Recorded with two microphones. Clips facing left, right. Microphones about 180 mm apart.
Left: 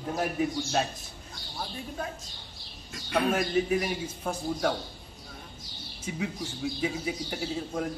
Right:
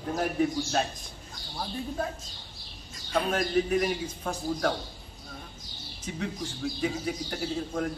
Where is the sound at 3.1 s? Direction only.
5° left (ahead or behind).